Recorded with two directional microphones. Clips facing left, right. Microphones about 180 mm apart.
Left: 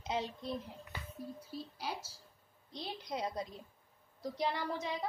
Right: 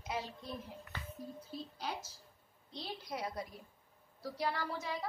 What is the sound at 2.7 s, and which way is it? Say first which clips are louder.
A woman's voice: left 2 dB; 20° left (ahead or behind).